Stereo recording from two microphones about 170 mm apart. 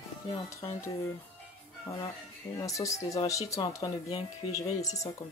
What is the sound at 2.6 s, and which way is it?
Speech, 20° left (ahead or behind).